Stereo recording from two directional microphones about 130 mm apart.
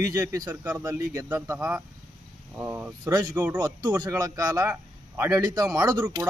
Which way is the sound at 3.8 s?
30° right (ahead or behind).